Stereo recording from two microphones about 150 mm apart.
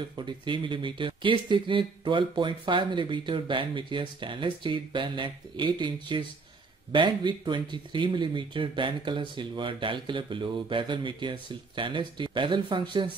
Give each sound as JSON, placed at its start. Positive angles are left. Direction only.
{"t": 0.2, "sound": "speech", "side_deg": -35}